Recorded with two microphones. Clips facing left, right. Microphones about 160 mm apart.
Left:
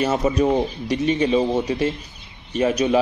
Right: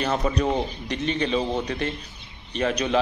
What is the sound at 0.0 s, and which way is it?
Speech, 5° left (ahead or behind).